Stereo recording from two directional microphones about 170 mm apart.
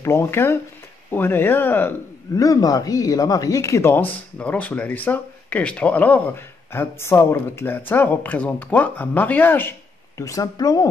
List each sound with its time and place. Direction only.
0.0 s a man's voice: 15° left (ahead or behind)